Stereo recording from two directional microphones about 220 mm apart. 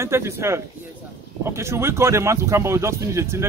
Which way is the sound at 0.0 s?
10° right (ahead or behind).